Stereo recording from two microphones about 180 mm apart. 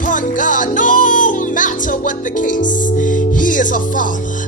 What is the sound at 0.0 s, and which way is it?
Music, 45° left (ahead or behind).